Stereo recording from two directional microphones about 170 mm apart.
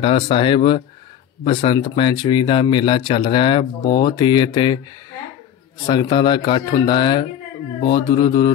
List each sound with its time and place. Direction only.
0.0 s speech: 30° left (ahead or behind)
5.9 s speech: 25° left (ahead or behind)